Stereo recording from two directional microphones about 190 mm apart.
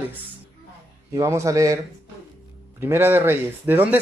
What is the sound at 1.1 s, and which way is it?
Speech, 15° right (ahead or behind).